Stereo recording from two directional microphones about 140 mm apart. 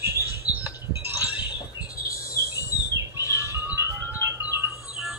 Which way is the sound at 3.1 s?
15° right (ahead or behind).